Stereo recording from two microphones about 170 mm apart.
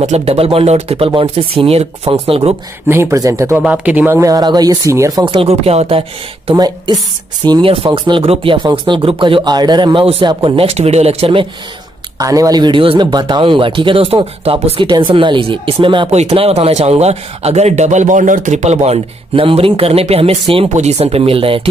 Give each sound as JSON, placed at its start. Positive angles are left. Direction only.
{"t": 0.0, "sound": "speech", "side_deg": -40}
{"t": 2.9, "sound": "speech", "side_deg": -15}
{"t": 5.2, "sound": "speech", "side_deg": -35}
{"t": 6.5, "sound": "a woman's voice", "side_deg": -25}
{"t": 12.2, "sound": "speech", "side_deg": -20}